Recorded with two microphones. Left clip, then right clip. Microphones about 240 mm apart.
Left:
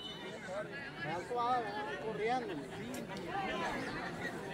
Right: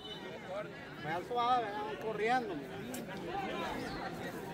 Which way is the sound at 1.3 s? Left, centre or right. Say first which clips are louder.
Right 3 dB; right.